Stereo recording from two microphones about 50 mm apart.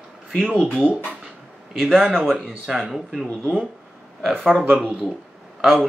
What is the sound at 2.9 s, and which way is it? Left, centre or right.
Speech, centre.